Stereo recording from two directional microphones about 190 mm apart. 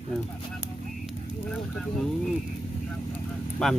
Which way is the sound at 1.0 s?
5° left (ahead or behind).